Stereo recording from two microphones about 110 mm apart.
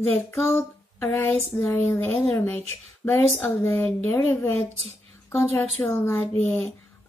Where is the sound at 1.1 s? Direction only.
15° left (ahead or behind).